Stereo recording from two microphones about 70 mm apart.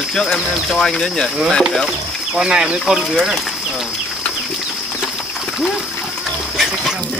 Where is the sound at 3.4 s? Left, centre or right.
Centre.